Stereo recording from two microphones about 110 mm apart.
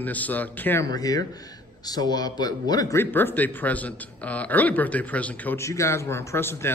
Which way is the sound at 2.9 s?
20° left (ahead or behind).